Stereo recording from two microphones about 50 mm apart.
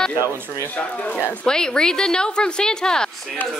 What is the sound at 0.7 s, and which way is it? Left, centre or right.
Speech, left.